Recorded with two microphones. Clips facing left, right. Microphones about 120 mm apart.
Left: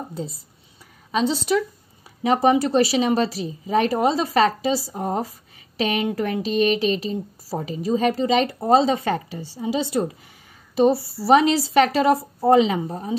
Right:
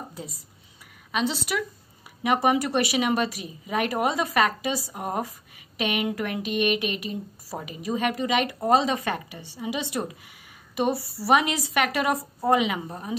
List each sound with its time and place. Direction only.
0.1 s a woman's voice: 30° left (ahead or behind)
2.2 s a woman's voice: 30° left (ahead or behind)